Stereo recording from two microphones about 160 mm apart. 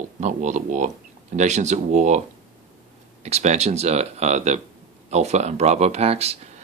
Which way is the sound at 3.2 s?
45° right (ahead or behind).